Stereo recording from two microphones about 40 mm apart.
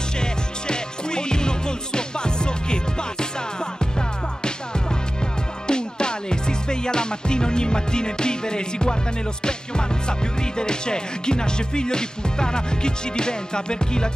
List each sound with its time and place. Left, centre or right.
0.2 s music: left
4.4 s music: left